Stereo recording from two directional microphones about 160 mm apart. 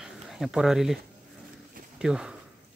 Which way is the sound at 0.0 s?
5° right (ahead or behind).